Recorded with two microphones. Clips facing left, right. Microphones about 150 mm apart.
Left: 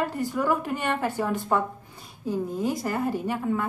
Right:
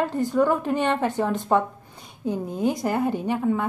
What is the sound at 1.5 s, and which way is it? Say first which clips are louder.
A woman's voice: right 4 dB; 5° right (ahead or behind).